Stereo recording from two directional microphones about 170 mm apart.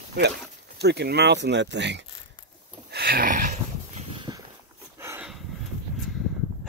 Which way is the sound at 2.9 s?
65° right (ahead or behind).